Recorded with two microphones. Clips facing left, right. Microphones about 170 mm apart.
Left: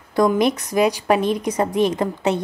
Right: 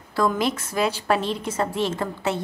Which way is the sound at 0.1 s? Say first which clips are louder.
Left 5 dB; 20° left (ahead or behind).